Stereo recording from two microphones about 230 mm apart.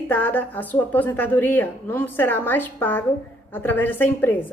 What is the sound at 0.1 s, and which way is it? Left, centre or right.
A woman's voice, centre.